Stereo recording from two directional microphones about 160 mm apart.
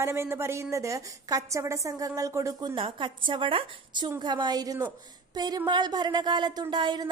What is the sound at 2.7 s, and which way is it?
A woman's voice, 30° right (ahead or behind).